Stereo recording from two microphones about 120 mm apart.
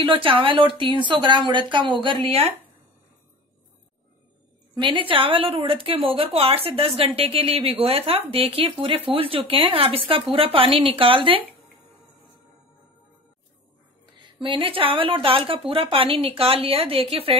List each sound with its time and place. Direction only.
0.0 s speech: 45° right (ahead or behind)
4.7 s speech: 45° right (ahead or behind)
14.1 s speech: 45° right (ahead or behind)